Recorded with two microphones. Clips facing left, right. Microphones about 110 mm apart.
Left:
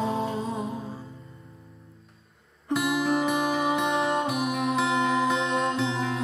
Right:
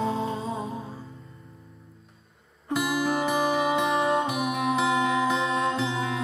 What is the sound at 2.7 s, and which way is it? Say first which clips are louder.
Music: left 1 dB; centre (ahead or behind).